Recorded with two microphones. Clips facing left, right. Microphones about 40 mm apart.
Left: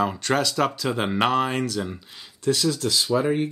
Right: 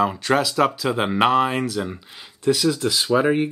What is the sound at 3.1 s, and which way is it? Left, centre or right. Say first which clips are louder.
Speech: right 5 dB; right.